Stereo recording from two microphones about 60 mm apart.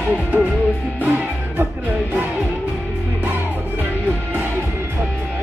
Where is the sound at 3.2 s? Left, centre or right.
Right.